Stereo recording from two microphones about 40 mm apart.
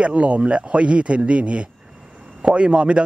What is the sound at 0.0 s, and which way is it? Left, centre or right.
Speech, right.